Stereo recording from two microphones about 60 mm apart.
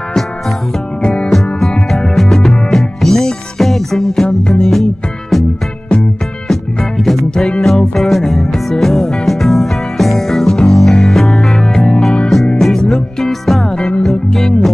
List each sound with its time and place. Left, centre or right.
1.0 s music: centre
1.9 s music: centre
6.5 s music: centre